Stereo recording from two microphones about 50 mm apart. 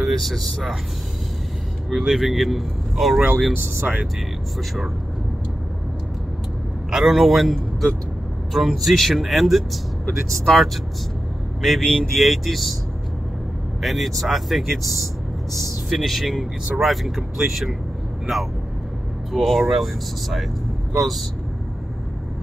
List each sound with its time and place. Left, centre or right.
0.0 s speech: centre
1.9 s speech: centre
3.8 s speech: right
6.9 s speech: centre
8.5 s speech: centre
13.7 s speech: centre